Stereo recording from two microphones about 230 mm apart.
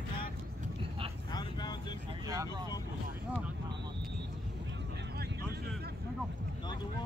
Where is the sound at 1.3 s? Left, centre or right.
Centre.